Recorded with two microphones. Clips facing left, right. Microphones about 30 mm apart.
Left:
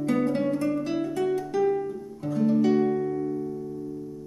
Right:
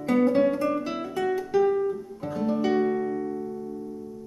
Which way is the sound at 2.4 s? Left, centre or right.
Centre.